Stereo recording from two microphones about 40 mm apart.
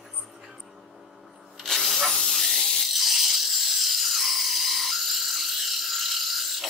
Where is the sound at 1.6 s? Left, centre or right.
Centre.